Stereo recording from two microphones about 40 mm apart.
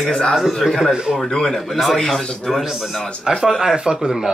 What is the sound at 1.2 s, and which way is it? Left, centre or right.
A man's voice, centre.